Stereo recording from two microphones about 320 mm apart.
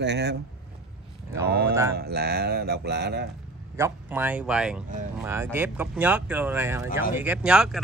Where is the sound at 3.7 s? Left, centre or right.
Centre.